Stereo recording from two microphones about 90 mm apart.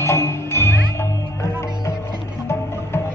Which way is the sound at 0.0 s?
30° left (ahead or behind).